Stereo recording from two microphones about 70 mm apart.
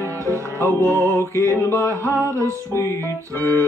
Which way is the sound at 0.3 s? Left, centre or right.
Right.